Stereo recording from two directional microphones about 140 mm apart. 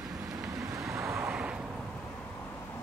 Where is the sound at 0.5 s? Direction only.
25° right (ahead or behind).